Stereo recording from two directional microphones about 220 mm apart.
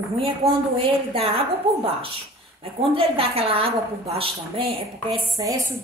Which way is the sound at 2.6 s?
25° right (ahead or behind).